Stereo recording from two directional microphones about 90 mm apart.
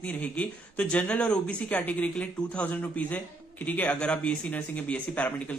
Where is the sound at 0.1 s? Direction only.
15° left (ahead or behind).